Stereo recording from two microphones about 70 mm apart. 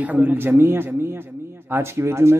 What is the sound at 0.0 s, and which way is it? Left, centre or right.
A man's voice, right.